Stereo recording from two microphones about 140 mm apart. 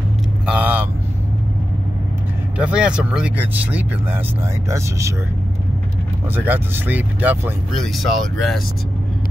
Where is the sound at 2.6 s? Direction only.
5° right (ahead or behind).